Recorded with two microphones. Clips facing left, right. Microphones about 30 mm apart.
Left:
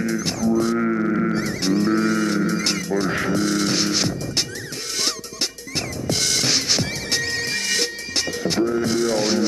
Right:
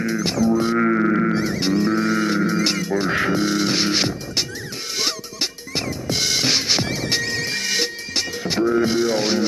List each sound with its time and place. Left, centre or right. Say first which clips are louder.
0.0 s music: right 2 dB; right